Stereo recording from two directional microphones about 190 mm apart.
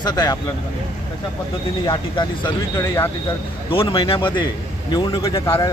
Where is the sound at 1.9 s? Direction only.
25° left (ahead or behind).